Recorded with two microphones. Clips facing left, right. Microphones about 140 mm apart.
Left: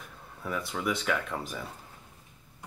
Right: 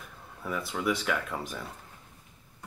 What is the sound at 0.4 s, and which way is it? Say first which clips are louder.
Speech: even; centre (ahead or behind).